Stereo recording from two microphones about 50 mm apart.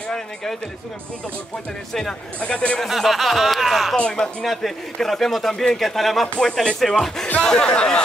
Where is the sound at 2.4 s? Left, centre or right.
Left.